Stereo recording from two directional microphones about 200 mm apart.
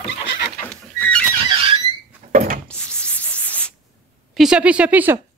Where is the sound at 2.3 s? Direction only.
40° right (ahead or behind).